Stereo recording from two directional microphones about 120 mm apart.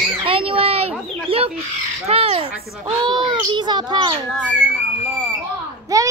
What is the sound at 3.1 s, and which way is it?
A child's voice, 40° right (ahead or behind).